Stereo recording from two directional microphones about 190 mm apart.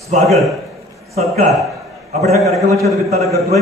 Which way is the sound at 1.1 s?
35° right (ahead or behind).